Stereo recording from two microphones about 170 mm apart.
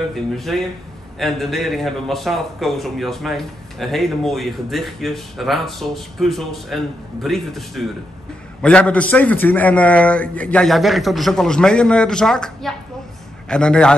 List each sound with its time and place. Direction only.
0.1 s a man's voice: centre (ahead or behind)